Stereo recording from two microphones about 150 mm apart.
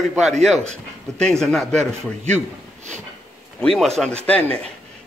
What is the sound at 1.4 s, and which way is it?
Speech, 5° left (ahead or behind).